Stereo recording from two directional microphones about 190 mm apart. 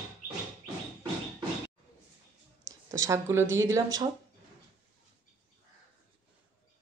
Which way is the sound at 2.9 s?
15° right (ahead or behind).